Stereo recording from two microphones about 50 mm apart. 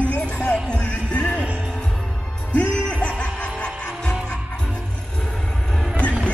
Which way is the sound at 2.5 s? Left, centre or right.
Left.